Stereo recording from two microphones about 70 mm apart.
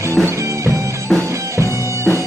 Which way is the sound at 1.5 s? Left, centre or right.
Right.